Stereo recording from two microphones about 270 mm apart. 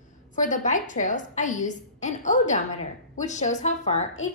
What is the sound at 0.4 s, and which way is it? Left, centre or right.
A woman's voice, left.